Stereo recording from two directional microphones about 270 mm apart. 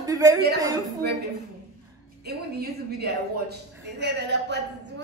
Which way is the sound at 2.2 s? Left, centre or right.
Right.